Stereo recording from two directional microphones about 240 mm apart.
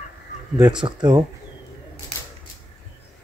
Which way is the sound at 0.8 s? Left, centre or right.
Centre.